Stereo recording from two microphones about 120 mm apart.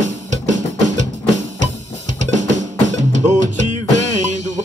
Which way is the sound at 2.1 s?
85° right.